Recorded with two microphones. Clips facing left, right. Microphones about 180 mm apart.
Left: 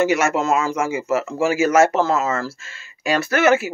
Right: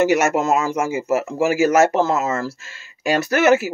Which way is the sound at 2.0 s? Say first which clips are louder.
Even; 20° right (ahead or behind).